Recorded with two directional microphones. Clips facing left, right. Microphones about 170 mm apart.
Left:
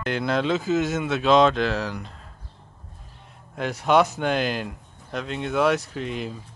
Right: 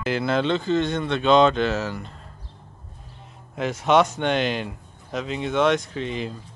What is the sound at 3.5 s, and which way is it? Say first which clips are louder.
Speech: right 1 dB; centre (ahead or behind).